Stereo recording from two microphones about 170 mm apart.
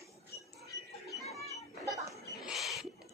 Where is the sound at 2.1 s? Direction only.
Centre (ahead or behind).